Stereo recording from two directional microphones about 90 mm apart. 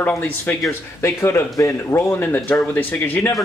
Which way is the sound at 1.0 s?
30° left (ahead or behind).